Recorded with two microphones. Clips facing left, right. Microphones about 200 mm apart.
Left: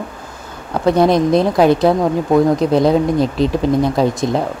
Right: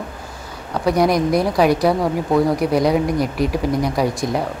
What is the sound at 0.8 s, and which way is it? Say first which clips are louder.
A woman's voice: left 4 dB; 25° left (ahead or behind).